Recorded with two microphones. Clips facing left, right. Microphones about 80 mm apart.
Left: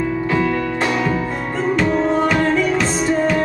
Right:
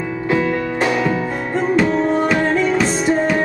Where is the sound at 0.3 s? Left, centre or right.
Right.